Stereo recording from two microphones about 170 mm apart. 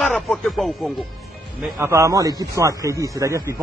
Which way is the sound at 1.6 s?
15° right (ahead or behind).